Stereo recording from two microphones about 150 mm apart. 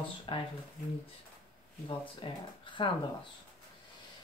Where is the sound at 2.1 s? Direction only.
35° left (ahead or behind).